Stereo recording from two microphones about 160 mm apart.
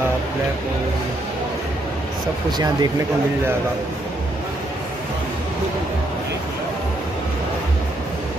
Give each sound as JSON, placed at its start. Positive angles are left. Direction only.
{"t": 2.5, "sound": "speech", "side_deg": -25}